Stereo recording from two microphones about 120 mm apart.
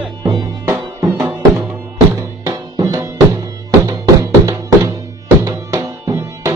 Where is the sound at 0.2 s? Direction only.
35° right (ahead or behind).